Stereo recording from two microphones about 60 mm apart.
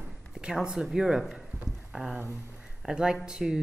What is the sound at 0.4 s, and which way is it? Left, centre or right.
Speech, centre.